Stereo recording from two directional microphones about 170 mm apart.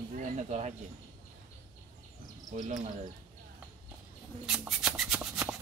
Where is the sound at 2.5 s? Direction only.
45° right (ahead or behind).